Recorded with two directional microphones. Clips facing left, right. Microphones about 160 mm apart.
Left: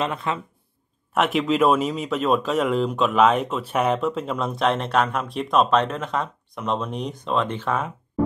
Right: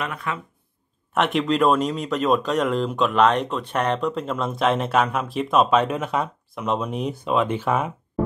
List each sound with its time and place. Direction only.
0.0 s speech: 25° left (ahead or behind)
1.1 s speech: centre (ahead or behind)